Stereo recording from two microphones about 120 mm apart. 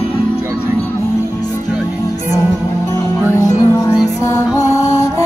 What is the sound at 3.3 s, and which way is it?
Music, 30° left (ahead or behind).